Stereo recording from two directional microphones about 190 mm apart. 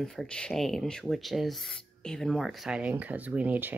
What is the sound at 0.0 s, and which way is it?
Speech, centre (ahead or behind).